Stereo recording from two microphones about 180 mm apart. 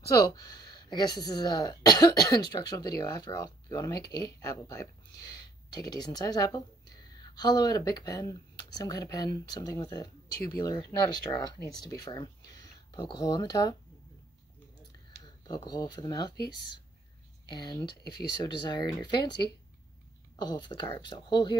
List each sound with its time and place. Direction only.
0.0 s speech: 20° left (ahead or behind)
12.4 s a sound: 20° left (ahead or behind)
15.2 s speech: 20° left (ahead or behind)
17.5 s speech: 25° left (ahead or behind)